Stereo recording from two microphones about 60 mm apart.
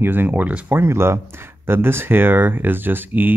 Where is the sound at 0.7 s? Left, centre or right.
Right.